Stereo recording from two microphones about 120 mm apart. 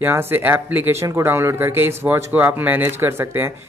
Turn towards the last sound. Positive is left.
turn(degrees=-20)  # may be behind; listen again after turning